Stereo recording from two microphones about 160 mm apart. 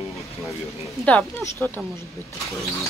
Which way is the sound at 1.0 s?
10° left (ahead or behind).